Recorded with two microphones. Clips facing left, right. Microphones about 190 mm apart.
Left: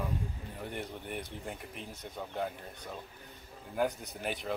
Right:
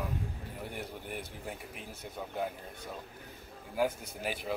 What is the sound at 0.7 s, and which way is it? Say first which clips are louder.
Speech: left 2 dB; 5° right (ahead or behind).